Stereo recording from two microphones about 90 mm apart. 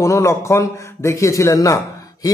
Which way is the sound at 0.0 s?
35° left (ahead or behind).